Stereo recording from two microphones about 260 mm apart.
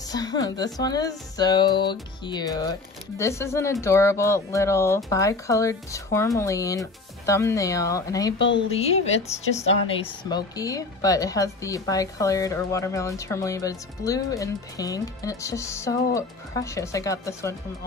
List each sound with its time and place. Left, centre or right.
0.1 s a woman's voice: centre
8.4 s speech: left
8.7 s speech: left
10.0 s a woman's voice: centre